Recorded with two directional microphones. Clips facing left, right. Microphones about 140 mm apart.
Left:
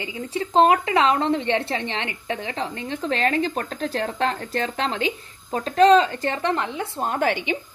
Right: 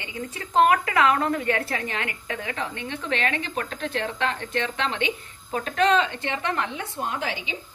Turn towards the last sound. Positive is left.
turn(degrees=60)  # may be behind; listen again after turning